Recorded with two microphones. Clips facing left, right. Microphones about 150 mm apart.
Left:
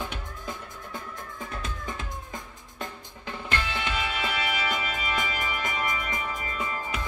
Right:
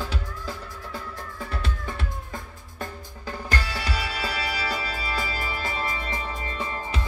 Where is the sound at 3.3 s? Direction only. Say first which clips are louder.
Right 1 dB; 40° right (ahead or behind).